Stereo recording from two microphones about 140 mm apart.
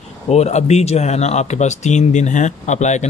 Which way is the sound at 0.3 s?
50° left (ahead or behind).